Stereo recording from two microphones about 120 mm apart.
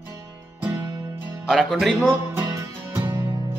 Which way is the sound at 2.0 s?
25° right (ahead or behind).